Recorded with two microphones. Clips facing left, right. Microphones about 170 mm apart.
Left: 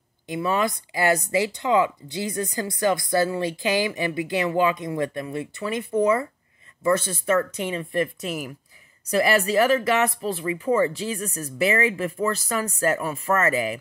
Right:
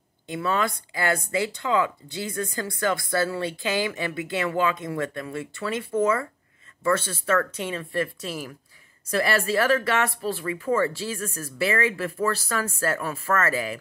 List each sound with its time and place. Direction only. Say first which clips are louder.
0.3 s speech: left 2 dB; 15° left (ahead or behind)